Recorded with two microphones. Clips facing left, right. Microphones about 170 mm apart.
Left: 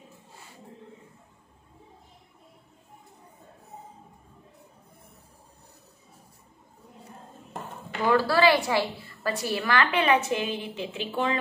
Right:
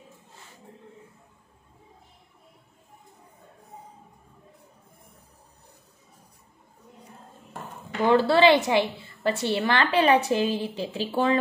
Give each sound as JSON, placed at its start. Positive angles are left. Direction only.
{"t": 8.0, "sound": "a woman's voice", "side_deg": -25}